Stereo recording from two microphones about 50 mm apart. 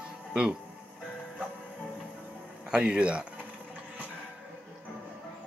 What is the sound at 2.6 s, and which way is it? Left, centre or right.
Speech, centre.